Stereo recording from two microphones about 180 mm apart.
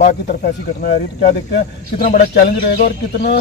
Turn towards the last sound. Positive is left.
turn(degrees=60)  # may be behind; listen again after turning